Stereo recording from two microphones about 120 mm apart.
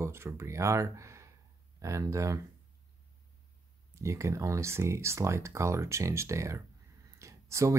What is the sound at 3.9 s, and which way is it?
Speech, 25° right (ahead or behind).